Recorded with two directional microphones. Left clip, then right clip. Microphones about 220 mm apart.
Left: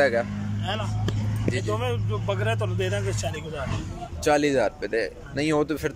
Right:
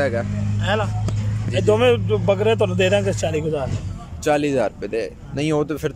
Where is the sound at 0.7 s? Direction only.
55° right (ahead or behind).